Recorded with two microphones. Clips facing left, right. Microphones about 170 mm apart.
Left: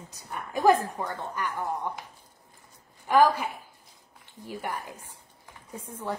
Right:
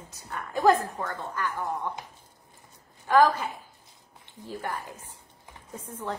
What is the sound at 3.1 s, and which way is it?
A woman's voice, 15° left (ahead or behind).